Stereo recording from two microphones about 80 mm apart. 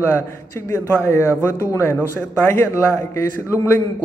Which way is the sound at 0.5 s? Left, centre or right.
Left.